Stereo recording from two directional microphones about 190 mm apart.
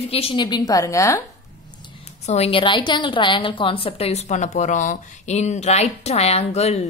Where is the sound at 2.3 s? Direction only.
30° left (ahead or behind).